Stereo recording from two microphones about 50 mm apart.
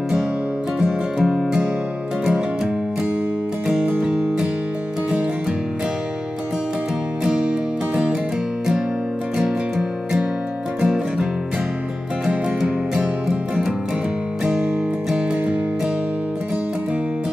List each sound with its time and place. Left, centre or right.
1.2 s music: centre
7.9 s music: centre
10.8 s music: centre
12.3 s music: centre